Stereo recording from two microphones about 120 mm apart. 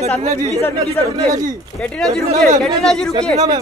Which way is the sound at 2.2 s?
65° right (ahead or behind).